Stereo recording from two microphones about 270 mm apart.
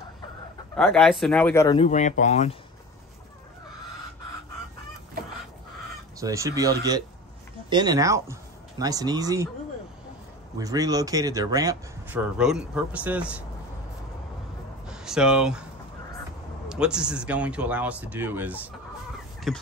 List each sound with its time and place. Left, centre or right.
0.7 s speech: centre
1.9 s speech: left
6.1 s speech: centre
10.6 s speech: centre
14.9 s speech: centre
16.6 s speech: centre